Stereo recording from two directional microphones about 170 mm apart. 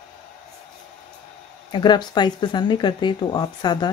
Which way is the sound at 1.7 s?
25° left (ahead or behind).